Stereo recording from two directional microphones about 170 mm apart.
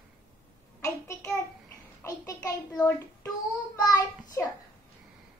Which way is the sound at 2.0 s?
20° left (ahead or behind).